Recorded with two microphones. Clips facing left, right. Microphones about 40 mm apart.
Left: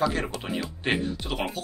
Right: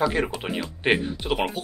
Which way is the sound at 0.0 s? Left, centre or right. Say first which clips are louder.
Right 3 dB; centre.